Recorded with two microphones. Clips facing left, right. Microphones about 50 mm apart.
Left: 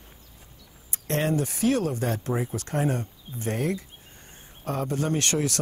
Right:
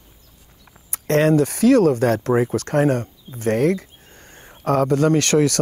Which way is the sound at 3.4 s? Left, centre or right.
Right.